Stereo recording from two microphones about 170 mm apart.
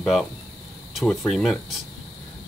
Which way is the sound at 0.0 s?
Centre (ahead or behind).